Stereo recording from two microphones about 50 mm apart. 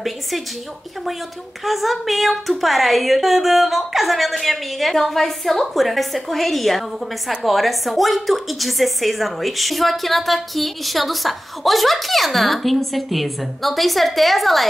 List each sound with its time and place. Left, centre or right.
1.6 s a woman's voice: centre